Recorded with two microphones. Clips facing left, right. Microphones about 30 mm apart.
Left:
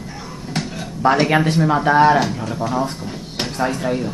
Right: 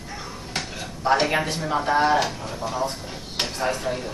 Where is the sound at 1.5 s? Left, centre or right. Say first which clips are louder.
Left 7 dB; left; by 4.1 s centre.